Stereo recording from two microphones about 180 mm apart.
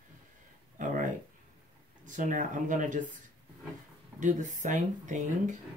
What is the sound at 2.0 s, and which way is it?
Speech, 45° right (ahead or behind).